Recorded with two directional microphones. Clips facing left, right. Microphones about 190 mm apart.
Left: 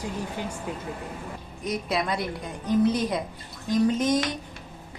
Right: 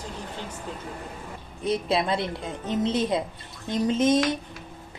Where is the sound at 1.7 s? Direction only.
25° right (ahead or behind).